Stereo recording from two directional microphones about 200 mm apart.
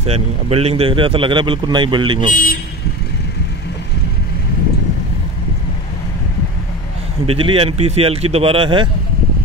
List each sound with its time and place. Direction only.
0.0 s speech: 30° right (ahead or behind)
2.3 s speech: 45° left (ahead or behind)
7.2 s speech: 30° right (ahead or behind)